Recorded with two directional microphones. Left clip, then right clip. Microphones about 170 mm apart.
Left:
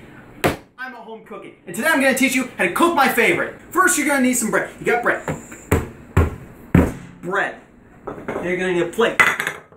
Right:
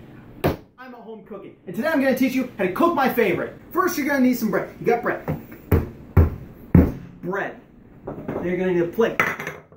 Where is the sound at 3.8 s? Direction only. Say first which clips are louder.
Left 5 dB; 25° left (ahead or behind).